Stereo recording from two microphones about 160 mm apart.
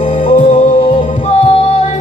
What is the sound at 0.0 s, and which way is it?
Music, 50° left (ahead or behind).